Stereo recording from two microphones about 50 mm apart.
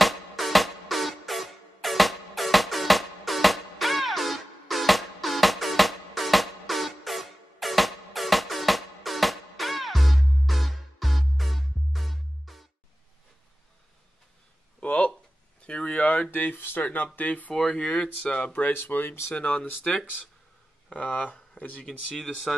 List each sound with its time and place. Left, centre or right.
0.0 s music: centre
14.8 s a sound: left
16.8 s speech: left; by 18.4 s centre
18.4 s speech: left
19.3 s speech: left
20.9 s speech: left
21.8 s speech: centre